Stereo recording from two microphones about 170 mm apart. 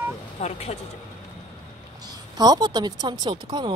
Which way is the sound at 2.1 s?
25° right (ahead or behind).